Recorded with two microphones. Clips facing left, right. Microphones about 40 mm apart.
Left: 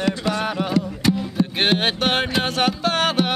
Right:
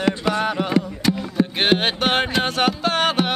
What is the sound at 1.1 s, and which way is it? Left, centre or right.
Music, centre.